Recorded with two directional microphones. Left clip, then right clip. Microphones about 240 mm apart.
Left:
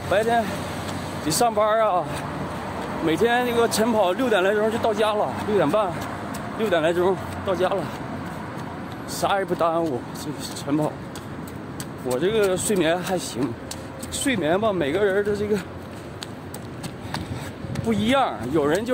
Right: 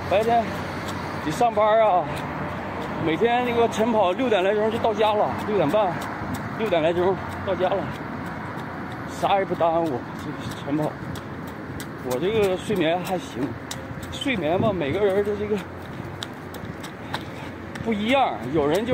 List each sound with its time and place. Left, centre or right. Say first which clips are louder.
0.1 s speech: even; left
1.4 s speech: right 1 dB; left
3.1 s speech: left 1 dB; centre
9.2 s speech: right 1 dB; centre
12.1 s speech: left 1 dB; left
14.4 s speech: left 1 dB; left
17.8 s speech: even; left